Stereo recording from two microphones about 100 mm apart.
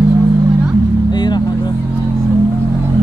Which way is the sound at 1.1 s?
45° left (ahead or behind).